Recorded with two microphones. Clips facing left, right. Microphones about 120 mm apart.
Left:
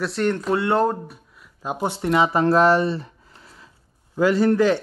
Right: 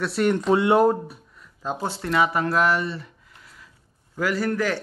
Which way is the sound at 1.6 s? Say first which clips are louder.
Left 3 dB; 15° left (ahead or behind).